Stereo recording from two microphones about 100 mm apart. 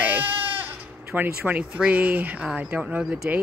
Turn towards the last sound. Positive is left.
turn(degrees=-20)  # may be behind; listen again after turning